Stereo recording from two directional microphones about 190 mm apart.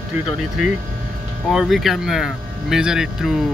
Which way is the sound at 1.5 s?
Centre (ahead or behind).